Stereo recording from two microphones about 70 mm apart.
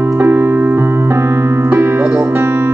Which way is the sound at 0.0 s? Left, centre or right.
Right.